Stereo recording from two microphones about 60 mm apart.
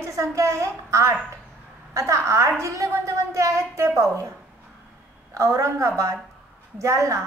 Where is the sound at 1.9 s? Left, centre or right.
Right.